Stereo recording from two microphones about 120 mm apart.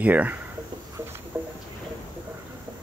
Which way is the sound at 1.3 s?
15° right (ahead or behind).